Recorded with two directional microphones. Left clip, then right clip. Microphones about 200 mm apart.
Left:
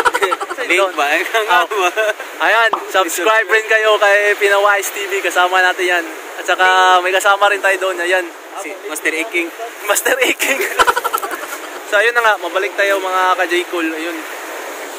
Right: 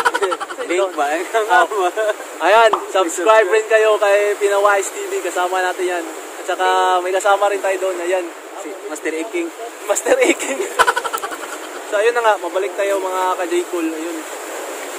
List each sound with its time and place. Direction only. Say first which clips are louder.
0.0 s a sound: left 3 dB; centre (ahead or behind)
0.9 s speech: left 3 dB; 15° right (ahead or behind)
2.4 s speech: right 1 dB; centre (ahead or behind)
9.0 s speech: left 5 dB; 20° right (ahead or behind)
9.8 s speech: even; 5° right (ahead or behind)